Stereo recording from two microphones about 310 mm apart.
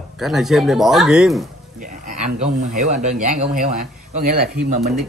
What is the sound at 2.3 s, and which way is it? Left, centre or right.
Speech, right.